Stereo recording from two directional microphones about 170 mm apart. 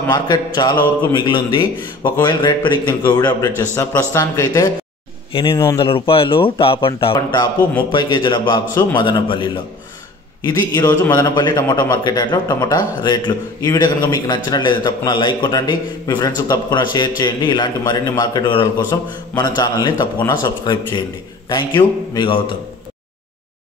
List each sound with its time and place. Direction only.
0.1 s a man's voice: 25° left (ahead or behind)
5.3 s a man's voice: 30° left (ahead or behind)